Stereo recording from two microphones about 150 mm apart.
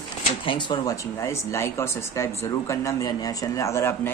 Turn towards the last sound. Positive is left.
turn(degrees=20)  # may be behind; listen again after turning